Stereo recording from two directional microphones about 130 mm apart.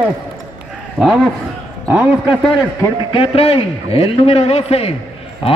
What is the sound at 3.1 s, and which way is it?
A man's voice, 45° left (ahead or behind).